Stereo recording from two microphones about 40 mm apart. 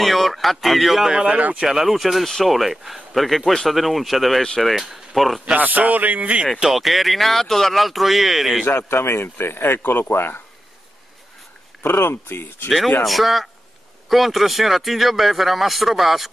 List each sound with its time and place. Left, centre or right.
0.0 s a man's voice: centre
1.1 s speech: right
1.7 s a man's voice: centre
5.6 s speech: right
6.6 s a man's voice: centre
8.7 s speech: left
11.8 s speech: left
13.0 s a man's voice: centre